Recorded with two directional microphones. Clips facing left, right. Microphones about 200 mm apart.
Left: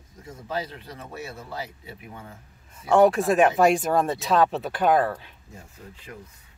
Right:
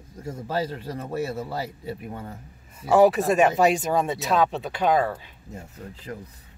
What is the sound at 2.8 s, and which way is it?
A woman's voice, 5° right (ahead or behind).